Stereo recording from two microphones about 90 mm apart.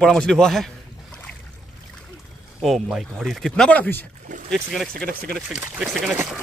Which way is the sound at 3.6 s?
20° left (ahead or behind).